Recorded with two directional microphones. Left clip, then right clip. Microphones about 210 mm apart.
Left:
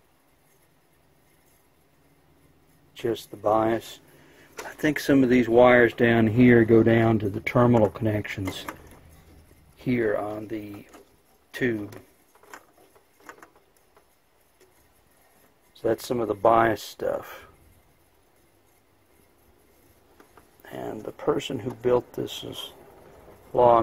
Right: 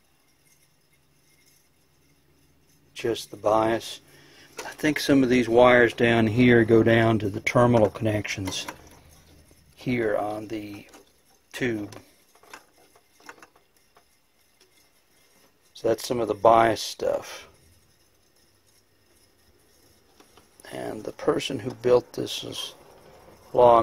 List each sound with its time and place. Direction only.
2.9 s speech: 10° right (ahead or behind)
9.8 s speech: 10° right (ahead or behind)
15.8 s speech: 10° right (ahead or behind)
20.6 s speech: 20° right (ahead or behind)